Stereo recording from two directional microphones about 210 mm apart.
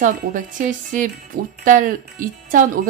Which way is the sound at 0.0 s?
40° right (ahead or behind).